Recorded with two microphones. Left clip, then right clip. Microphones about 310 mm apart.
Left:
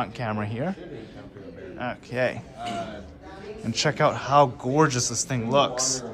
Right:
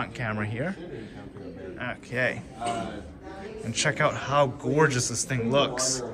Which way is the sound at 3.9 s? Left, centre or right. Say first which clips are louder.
Left 4 dB; centre.